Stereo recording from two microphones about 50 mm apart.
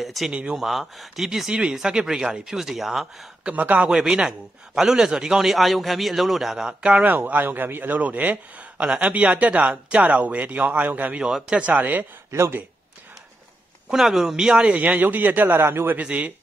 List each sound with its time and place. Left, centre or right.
0.0 s speech: centre
0.3 s speech: centre
0.6 s speech: centre
1.5 s a man's voice: right; by 3.3 s centre
3.5 s a man's voice: right
3.9 s a man's voice: centre
6.8 s speech: right
7.2 s a man's voice: right
8.0 s speech: right
11.1 s speech: centre; by 12.1 s right
12.3 s speech: right
13.8 s a man's voice: centre
14.7 s a man's voice: right
16.0 s speech: right